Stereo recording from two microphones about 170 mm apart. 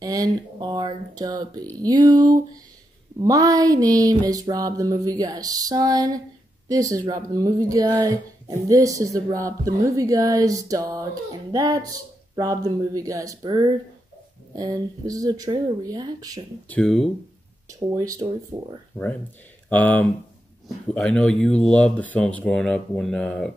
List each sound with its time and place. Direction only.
0.0 s speech: 20° right (ahead or behind)
16.6 s speech: 5° left (ahead or behind)
17.9 s speech: 20° right (ahead or behind)
19.7 s speech: 10° left (ahead or behind)